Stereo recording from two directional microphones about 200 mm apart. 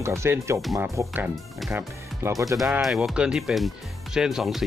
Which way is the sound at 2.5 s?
Centre (ahead or behind).